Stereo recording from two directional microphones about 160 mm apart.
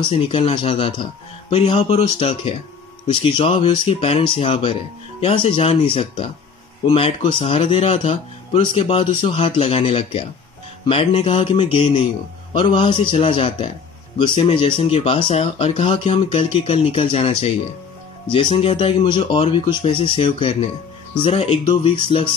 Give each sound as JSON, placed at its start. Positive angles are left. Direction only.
{"t": 0.0, "sound": "speech", "side_deg": 35}